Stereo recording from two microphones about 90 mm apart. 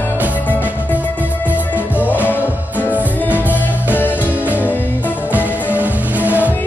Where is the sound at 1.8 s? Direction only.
15° right (ahead or behind).